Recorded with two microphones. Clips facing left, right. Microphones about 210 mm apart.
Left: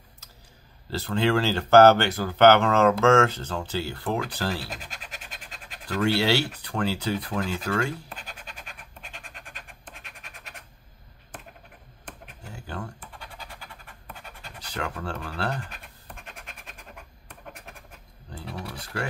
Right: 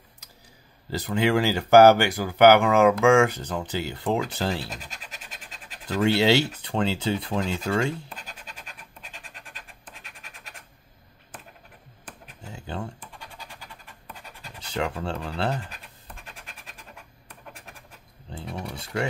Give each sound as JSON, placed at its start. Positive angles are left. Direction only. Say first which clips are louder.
{"t": 0.8, "sound": "speech", "louder": "right 1 dB", "side_deg": -15}
{"t": 6.0, "sound": "speech", "louder": "right 3 dB", "side_deg": -20}
{"t": 12.5, "sound": "computer keyboard", "louder": "right 3 dB", "side_deg": -20}
{"t": 14.6, "sound": "a sound", "louder": "right 4 dB", "side_deg": -25}
{"t": 17.3, "sound": "scratch", "louder": "left 2 dB", "side_deg": 0}
{"t": 18.3, "sound": "a sound", "louder": "right 2 dB", "side_deg": -20}